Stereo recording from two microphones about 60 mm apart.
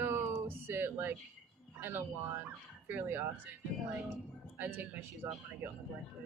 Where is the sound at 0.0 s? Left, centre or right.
Right.